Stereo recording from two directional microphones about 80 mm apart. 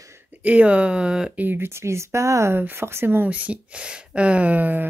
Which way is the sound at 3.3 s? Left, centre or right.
Centre.